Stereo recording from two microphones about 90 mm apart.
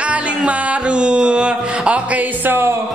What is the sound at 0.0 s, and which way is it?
Music, 15° right (ahead or behind).